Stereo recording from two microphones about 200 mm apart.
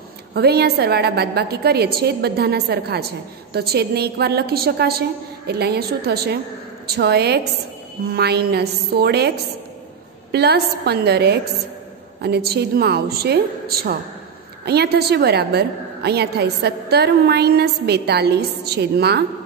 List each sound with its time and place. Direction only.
0.3 s a woman's voice: 50° right (ahead or behind)
10.3 s a woman's voice: 55° right (ahead or behind)